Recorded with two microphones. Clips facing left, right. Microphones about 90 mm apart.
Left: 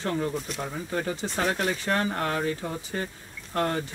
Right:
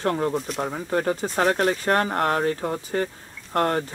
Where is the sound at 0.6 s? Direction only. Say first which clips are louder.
Right 6 dB; 45° right (ahead or behind).